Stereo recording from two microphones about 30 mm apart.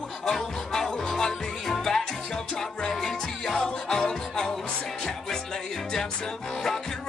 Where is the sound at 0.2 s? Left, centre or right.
Centre.